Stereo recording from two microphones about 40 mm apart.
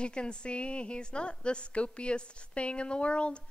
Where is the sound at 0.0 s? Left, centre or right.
Left.